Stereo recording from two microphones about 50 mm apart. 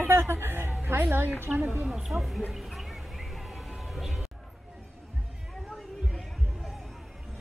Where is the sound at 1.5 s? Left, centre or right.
Centre.